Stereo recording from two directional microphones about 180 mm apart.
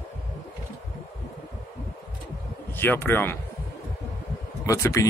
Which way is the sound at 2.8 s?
10° left (ahead or behind).